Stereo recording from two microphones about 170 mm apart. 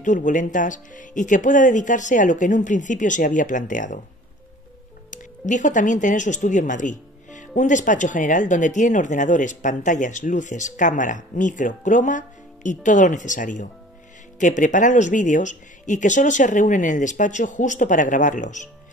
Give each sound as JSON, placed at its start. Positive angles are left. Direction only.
{"t": 0.0, "sound": "speech", "side_deg": 50}
{"t": 5.1, "sound": "speech", "side_deg": 45}